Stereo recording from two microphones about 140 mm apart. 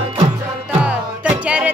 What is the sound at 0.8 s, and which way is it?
Music, 10° right (ahead or behind).